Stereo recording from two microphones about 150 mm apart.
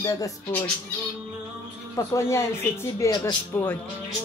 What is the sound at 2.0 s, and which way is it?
Speech, 20° left (ahead or behind).